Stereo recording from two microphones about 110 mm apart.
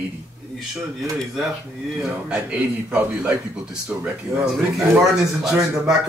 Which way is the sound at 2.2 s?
10° right (ahead or behind).